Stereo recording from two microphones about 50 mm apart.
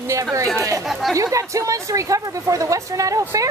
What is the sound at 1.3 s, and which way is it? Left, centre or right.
Speech, right.